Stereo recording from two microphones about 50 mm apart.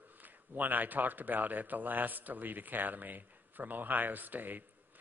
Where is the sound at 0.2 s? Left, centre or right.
Right.